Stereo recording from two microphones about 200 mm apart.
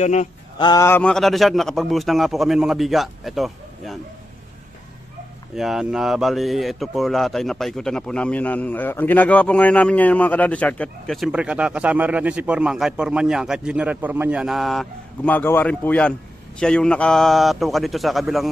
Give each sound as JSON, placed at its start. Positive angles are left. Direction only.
{"t": 0.0, "sound": "speech", "side_deg": 35}
{"t": 0.6, "sound": "speech", "side_deg": 20}
{"t": 5.6, "sound": "speech", "side_deg": 0}